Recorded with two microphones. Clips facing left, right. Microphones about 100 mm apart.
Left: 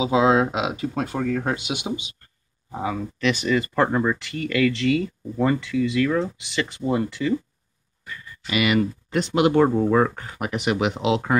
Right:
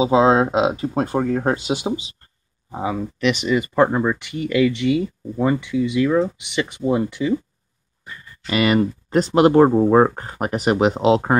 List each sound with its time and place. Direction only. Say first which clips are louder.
0.0 s speech: right 3 dB; 35° right (ahead or behind)
2.7 s speech: right 3 dB; 15° right (ahead or behind)
8.5 s speech: right 3 dB; 40° right (ahead or behind)